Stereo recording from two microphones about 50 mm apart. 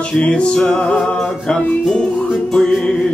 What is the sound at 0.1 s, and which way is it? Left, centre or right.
Music, left.